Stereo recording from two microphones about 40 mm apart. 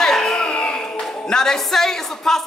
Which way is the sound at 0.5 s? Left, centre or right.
Left.